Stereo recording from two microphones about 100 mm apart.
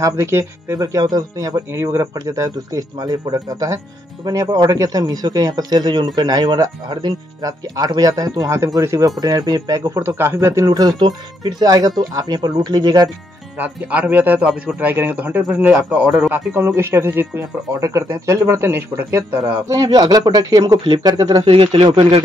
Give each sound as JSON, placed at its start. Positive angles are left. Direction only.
{"t": 0.0, "sound": "speech", "side_deg": -30}
{"t": 0.7, "sound": "speech", "side_deg": -35}
{"t": 1.7, "sound": "speech", "side_deg": -25}
{"t": 13.6, "sound": "a man's voice", "side_deg": -15}
{"t": 16.3, "sound": "speech", "side_deg": -20}
{"t": 19.7, "sound": "speech", "side_deg": -40}
{"t": 20.8, "sound": "speech", "side_deg": -50}
{"t": 21.5, "sound": "speech", "side_deg": -65}